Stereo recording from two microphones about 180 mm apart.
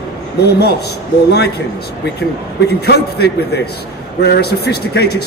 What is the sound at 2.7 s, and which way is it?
Speech, 65° left (ahead or behind).